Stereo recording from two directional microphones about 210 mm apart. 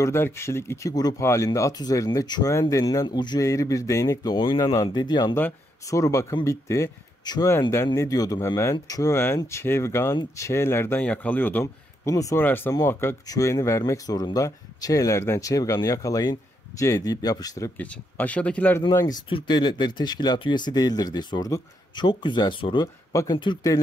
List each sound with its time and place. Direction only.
0.0 s speech: 10° left (ahead or behind)